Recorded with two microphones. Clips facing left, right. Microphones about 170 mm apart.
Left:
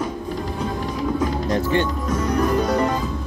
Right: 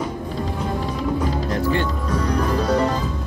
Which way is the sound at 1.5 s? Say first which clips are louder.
Left 3 dB; 20° left (ahead or behind).